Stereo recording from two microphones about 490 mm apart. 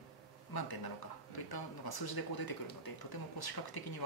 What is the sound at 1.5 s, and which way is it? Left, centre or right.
Speech, left.